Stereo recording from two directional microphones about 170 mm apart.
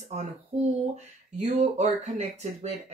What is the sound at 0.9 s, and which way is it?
Speech, 40° right (ahead or behind).